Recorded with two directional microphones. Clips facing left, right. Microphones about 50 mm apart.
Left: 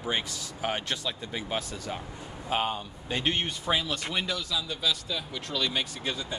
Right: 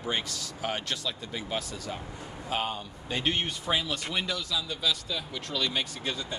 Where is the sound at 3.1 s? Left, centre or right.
Centre.